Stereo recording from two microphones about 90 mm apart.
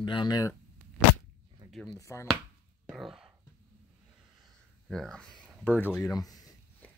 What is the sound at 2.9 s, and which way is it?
Speech, 5° right (ahead or behind).